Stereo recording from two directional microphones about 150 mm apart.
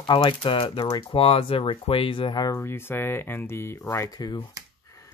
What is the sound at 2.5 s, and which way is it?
Speech, 15° left (ahead or behind).